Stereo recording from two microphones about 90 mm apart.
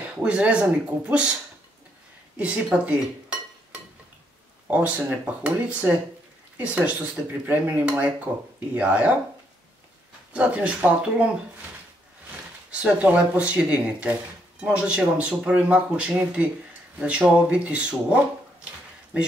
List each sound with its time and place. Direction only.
0.0 s speech: 15° right (ahead or behind)
2.3 s dishes: 10° right (ahead or behind)
4.6 s speech: 15° right (ahead or behind)
10.3 s speech: 15° right (ahead or behind)
12.7 s speech: 15° right (ahead or behind)